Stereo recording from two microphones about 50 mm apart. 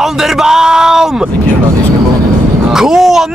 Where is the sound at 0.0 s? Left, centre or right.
Centre.